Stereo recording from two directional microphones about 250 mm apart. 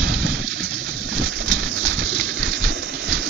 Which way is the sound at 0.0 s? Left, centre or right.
Right.